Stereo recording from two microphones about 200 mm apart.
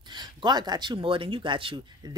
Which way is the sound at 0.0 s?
20° right (ahead or behind).